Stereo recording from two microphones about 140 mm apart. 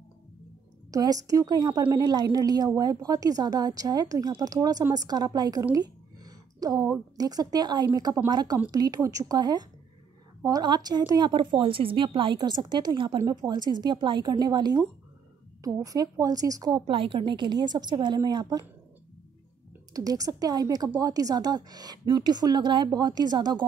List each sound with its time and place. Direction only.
0.9 s a woman's voice: 25° right (ahead or behind)
19.9 s a woman's voice: 25° right (ahead or behind)